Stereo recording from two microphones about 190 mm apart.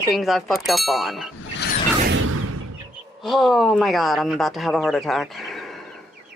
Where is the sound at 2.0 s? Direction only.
90° right.